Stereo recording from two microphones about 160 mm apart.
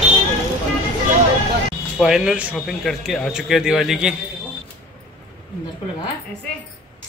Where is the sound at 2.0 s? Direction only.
5° right (ahead or behind).